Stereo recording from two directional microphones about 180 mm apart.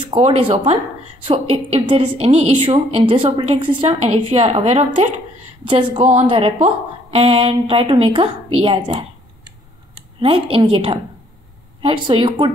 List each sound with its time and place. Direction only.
0.0 s a woman's voice: 30° right (ahead or behind)
10.2 s speech: 30° right (ahead or behind)